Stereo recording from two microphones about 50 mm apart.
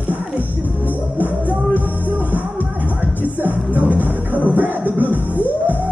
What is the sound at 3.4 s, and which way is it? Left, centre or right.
Music, right.